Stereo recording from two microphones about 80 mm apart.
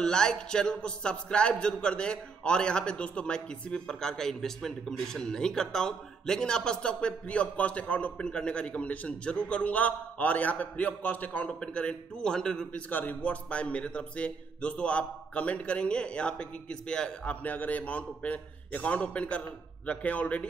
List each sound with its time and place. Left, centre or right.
0.0 s a man's voice: centre